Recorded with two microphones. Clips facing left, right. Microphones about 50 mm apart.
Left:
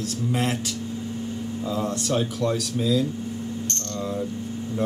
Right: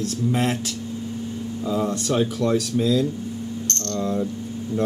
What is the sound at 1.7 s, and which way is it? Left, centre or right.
Speech, centre.